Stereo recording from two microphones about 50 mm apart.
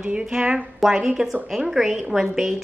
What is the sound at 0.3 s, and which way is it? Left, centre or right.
A woman's voice, centre.